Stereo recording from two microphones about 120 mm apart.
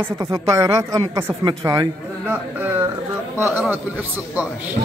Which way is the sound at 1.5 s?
35° right (ahead or behind).